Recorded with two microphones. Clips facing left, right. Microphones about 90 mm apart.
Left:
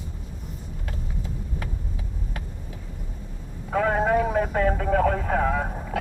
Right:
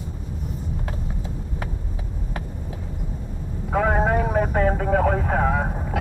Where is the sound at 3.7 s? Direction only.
15° right (ahead or behind).